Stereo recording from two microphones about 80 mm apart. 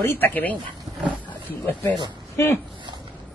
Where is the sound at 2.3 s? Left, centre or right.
Left.